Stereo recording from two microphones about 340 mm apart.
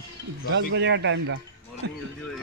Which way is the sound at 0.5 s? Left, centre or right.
Right.